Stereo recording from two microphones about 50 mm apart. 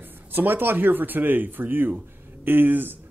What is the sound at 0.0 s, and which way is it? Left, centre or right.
Speech, right.